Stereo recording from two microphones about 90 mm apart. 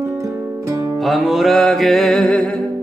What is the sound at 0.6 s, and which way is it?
Music, 35° right (ahead or behind).